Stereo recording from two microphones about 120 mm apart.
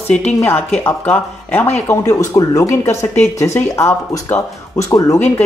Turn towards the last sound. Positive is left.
turn(degrees=20)  # may be behind; listen again after turning